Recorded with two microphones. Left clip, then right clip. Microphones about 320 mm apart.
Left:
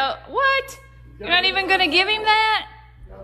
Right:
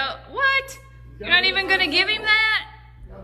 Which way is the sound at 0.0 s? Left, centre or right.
Centre.